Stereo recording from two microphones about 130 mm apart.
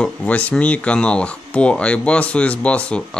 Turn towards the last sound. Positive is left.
turn(degrees=10)  # may be behind; listen again after turning